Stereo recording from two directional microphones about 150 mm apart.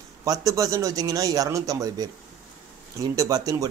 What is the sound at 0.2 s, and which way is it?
A man's voice, 25° right (ahead or behind).